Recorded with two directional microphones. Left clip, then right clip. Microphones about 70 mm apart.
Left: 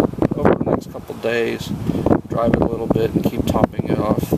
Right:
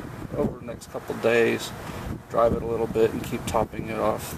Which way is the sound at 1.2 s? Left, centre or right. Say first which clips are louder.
Left 1 dB; left.